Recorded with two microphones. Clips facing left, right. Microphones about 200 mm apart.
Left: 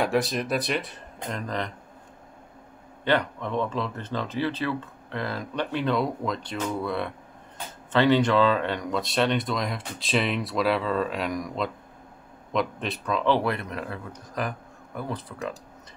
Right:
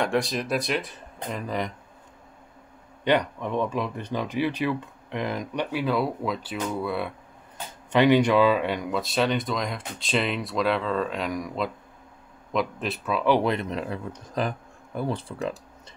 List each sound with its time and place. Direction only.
0.0 s speech: centre (ahead or behind)
3.0 s speech: 15° right (ahead or behind)